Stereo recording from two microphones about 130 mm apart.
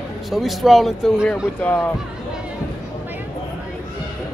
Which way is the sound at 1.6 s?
10° left (ahead or behind).